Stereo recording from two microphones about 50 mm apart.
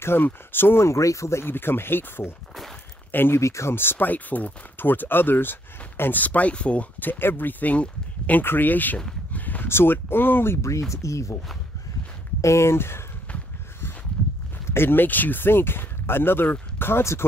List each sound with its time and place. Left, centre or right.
0.0 s speech: left
0.8 s speech: left
1.4 s speech: left
3.3 s speech: left
3.7 s speech: left
7.0 s speech: left
9.3 s a sound: left
9.7 s speech: left
10.9 s speech: left
12.4 s speech: left
14.7 s speech: left